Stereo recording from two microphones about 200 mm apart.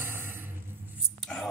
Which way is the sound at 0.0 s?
10° right (ahead or behind).